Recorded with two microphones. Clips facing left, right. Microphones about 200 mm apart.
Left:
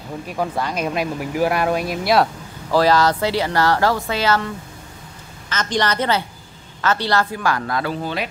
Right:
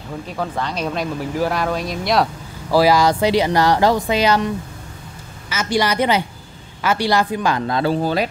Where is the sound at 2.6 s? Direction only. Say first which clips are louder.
Right 2 dB; 10° right (ahead or behind).